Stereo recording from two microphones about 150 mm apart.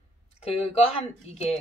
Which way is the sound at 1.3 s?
45° left (ahead or behind).